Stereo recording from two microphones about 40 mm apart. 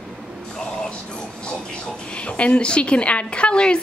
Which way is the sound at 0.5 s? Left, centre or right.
Centre.